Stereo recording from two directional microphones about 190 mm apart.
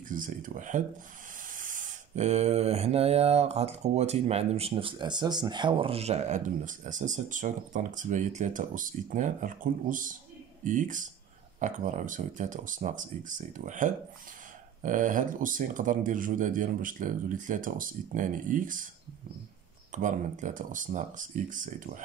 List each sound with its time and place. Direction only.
0.1 s speech: 45° right (ahead or behind)
1.5 s mantra: 45° right (ahead or behind)
11.6 s speech: 40° right (ahead or behind)
19.9 s speech: 40° right (ahead or behind)